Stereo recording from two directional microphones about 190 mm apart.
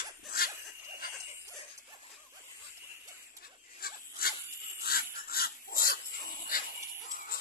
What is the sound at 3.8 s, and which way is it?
Zipper, 50° left (ahead or behind).